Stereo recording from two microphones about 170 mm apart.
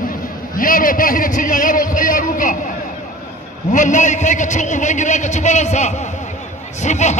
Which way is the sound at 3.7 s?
50° left (ahead or behind).